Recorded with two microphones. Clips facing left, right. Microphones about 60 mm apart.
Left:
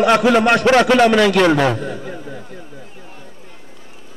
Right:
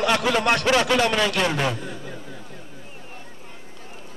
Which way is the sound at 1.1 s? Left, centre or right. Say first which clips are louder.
Left 9 dB; left.